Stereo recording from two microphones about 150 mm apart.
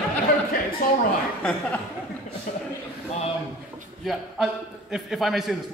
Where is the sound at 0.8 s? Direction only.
70° left (ahead or behind).